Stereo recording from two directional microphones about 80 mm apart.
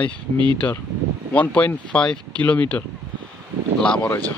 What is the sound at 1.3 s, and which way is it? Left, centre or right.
Speech, centre.